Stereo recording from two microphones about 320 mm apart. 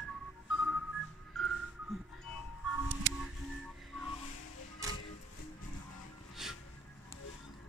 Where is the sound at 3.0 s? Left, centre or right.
Right.